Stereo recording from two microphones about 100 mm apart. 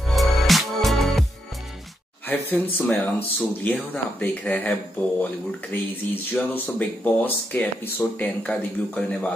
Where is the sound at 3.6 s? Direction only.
15° left (ahead or behind).